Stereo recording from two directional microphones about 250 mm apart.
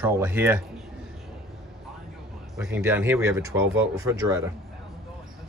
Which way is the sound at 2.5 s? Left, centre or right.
Centre.